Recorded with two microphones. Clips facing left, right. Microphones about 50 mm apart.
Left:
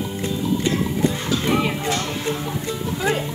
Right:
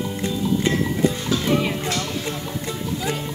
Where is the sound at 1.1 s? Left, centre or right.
Left.